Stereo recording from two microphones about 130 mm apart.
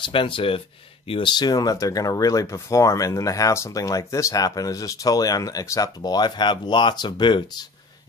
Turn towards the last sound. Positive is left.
turn(degrees=35)  # may be behind; listen again after turning